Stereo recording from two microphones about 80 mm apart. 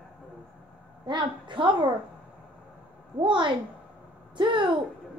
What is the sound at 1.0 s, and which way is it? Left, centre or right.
Speech, right.